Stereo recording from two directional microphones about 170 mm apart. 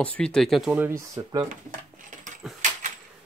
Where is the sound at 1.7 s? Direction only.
50° right (ahead or behind).